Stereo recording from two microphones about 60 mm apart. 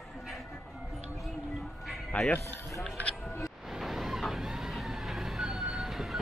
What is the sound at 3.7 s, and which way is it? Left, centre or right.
Vehicle, centre.